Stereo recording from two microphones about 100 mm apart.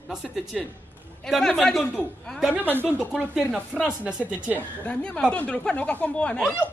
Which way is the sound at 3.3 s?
5° right (ahead or behind).